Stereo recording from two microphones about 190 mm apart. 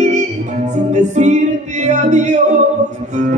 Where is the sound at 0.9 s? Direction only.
40° right (ahead or behind).